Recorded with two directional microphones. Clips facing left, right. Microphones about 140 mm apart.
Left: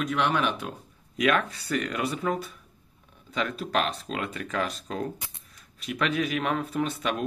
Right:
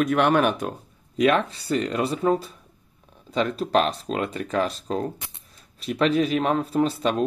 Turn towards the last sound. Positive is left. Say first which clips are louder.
# right 6 dB
turn(degrees=-35)  # may be behind; listen again after turning